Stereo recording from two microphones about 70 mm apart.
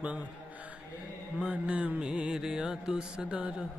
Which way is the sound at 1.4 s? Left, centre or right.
Centre.